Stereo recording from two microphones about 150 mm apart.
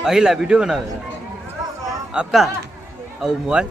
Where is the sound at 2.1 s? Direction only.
5° right (ahead or behind).